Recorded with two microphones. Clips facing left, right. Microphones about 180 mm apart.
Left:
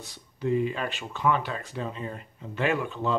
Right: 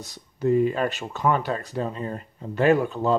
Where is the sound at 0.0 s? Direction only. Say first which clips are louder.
Right 6 dB; 45° right (ahead or behind).